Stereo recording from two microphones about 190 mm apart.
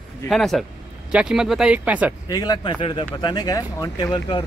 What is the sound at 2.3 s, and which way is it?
Speech, 20° left (ahead or behind).